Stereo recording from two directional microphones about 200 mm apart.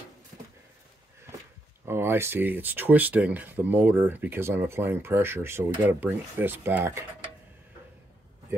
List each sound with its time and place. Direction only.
1.9 s speech: 10° right (ahead or behind)